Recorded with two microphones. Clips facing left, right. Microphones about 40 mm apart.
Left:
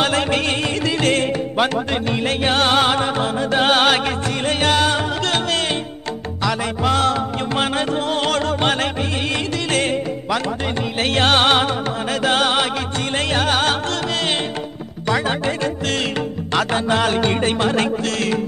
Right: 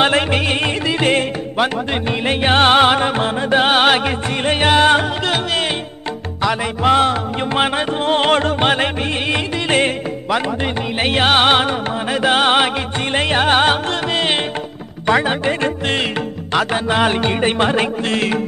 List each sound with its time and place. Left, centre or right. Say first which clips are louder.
0.6 s music: right 2 dB; right
3.5 s music: right 2 dB; centre
5.2 s music: right 1 dB; centre
8.0 s music: right 5 dB; right